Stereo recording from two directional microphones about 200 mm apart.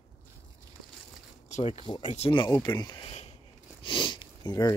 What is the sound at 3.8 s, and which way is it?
Sniff, 25° left (ahead or behind).